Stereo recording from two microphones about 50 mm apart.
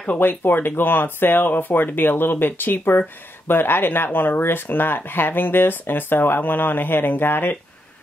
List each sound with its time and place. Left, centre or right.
0.2 s speech: left